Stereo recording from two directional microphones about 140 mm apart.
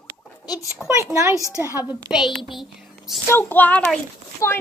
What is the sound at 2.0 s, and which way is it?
A child's voice, 5° right (ahead or behind).